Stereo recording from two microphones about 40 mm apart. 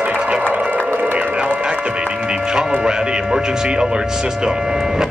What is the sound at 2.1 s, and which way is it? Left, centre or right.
Music, right.